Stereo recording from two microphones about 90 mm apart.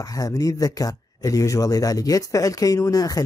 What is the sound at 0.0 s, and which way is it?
Speech, 40° left (ahead or behind).